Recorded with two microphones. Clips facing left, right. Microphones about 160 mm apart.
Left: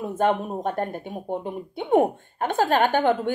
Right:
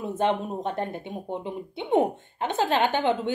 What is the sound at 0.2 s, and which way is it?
A woman's voice, 50° left (ahead or behind).